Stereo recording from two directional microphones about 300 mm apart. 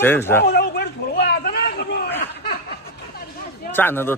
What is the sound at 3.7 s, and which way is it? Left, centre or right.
Speech, centre.